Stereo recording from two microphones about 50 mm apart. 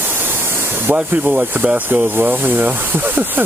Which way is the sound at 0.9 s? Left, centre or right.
Right.